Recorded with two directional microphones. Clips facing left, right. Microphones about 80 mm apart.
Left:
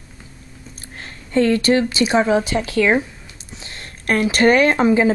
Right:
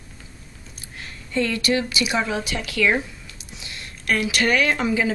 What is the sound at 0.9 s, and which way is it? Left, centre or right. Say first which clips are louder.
Speech: left 6 dB; left.